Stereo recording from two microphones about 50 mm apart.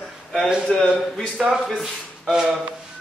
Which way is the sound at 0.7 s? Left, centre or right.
Centre.